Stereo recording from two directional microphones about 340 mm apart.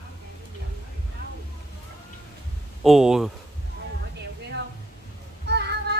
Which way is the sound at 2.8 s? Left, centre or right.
Centre.